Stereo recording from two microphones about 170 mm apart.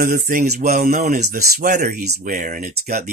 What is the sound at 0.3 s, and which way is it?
Speech, 50° right (ahead or behind).